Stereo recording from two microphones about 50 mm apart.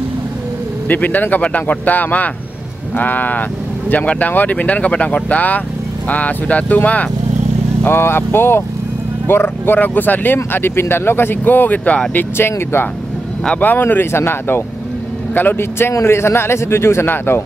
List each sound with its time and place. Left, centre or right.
0.8 s speech: left
7.9 s speech: left
12.4 s speech: left
13.6 s speech: left
15.3 s speech: left
15.9 s speech: left